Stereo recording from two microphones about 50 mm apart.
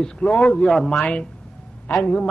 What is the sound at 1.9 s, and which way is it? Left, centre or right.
Speech, left.